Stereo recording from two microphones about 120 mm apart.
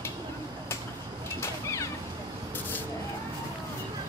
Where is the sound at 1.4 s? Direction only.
25° left (ahead or behind).